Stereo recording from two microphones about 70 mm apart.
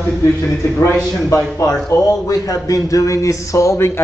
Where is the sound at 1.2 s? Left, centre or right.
Left.